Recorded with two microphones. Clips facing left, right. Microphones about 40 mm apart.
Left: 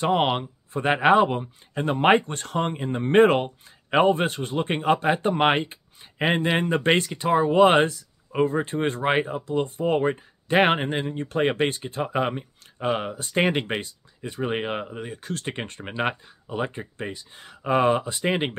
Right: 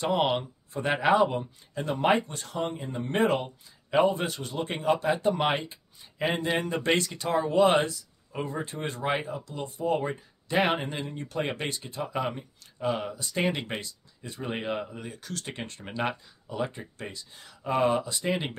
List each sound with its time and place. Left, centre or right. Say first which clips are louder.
0.0 s speech: left 4 dB; left